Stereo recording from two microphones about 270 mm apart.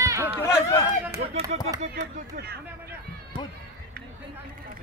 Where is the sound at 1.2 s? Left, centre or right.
Right.